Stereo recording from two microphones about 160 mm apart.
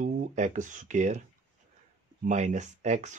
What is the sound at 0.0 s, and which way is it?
Speech, 50° right (ahead or behind).